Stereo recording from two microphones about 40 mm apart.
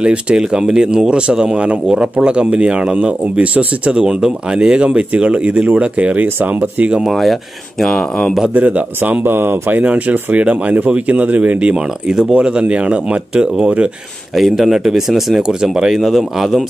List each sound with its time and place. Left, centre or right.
0.0 s a man's voice: right
7.1 s a man's voice: centre
8.5 s a man's voice: right
9.2 s speech: right
9.8 s speech: right
11.7 s speech: centre
14.3 s speech: centre
15.4 s a man's voice: centre